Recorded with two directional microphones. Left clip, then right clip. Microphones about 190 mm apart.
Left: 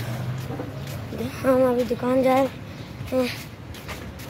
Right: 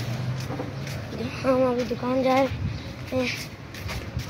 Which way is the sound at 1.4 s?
15° left (ahead or behind).